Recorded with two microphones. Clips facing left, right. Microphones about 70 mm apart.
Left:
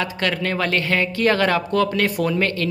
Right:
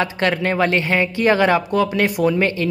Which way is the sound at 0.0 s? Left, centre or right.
Right.